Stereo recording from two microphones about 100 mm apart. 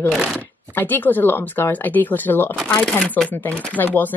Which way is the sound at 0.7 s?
20° left (ahead or behind).